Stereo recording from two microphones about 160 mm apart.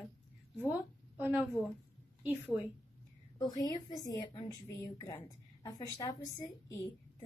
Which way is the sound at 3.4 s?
25° left (ahead or behind).